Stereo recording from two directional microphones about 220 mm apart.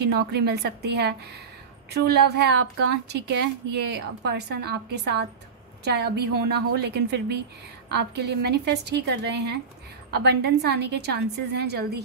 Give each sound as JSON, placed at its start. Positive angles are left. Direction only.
{"t": 0.1, "sound": "a woman's voice", "side_deg": -50}